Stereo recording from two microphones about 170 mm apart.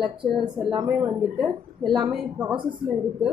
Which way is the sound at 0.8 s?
10° right (ahead or behind).